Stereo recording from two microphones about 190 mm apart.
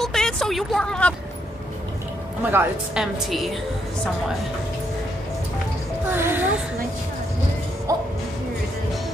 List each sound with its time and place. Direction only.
0.0 s a sound: centre (ahead or behind)
2.5 s a woman's voice: 5° right (ahead or behind)
6.0 s speech: 10° right (ahead or behind)
7.9 s speech: 20° right (ahead or behind)